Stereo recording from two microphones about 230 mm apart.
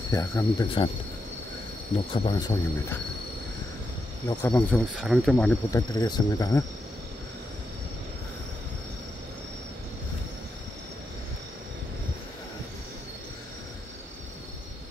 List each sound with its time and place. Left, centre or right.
0.1 s speech: centre
2.2 s speech: centre
4.3 s speech: centre
5.8 s speech: centre